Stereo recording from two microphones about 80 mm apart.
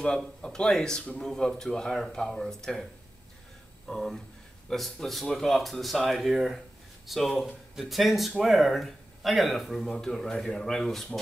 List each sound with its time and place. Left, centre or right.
0.0 s speech: centre